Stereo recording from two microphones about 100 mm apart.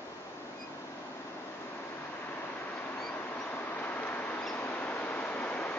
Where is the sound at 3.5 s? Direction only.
20° left (ahead or behind).